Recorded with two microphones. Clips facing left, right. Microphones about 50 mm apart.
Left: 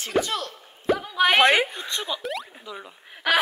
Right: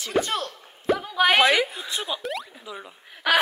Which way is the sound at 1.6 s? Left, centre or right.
Centre.